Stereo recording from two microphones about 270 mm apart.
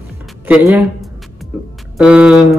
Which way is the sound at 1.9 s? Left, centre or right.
Centre.